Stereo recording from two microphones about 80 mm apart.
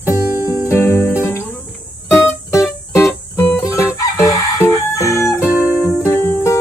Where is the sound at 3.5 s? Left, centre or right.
Left.